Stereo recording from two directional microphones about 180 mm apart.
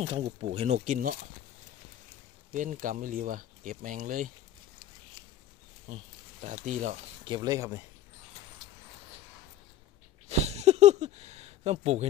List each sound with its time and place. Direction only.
0.0 s speech: 35° right (ahead or behind)
2.5 s speech: 45° right (ahead or behind)
5.9 s speech: 40° right (ahead or behind)
7.2 s speech: 20° right (ahead or behind)
10.2 s a sound: 35° right (ahead or behind)